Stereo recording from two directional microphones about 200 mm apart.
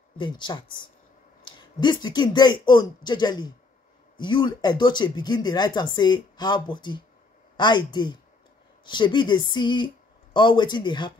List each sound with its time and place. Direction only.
0.2 s speech: 25° left (ahead or behind)